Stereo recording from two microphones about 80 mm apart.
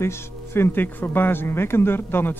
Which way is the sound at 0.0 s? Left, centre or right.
Left.